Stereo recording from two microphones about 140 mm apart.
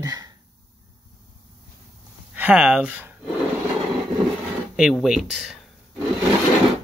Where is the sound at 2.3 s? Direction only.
10° right (ahead or behind).